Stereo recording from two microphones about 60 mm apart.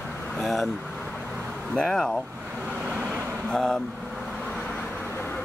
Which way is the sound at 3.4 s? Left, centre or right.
Centre.